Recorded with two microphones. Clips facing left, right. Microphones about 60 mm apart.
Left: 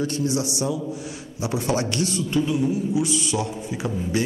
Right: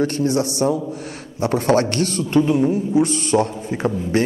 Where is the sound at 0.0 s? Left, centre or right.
Right.